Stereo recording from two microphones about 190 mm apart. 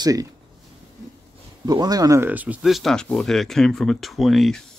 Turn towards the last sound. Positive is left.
turn(degrees=0)  # may be behind; listen again after turning